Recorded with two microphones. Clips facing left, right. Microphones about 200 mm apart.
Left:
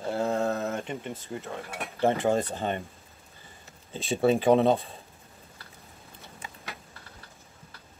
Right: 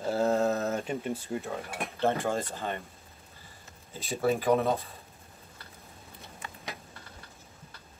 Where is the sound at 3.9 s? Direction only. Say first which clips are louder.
Left 4 dB; 25° left (ahead or behind).